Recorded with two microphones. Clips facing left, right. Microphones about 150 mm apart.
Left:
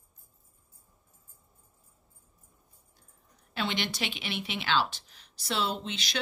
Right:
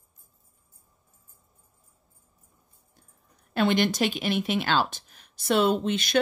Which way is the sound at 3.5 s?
50° right (ahead or behind).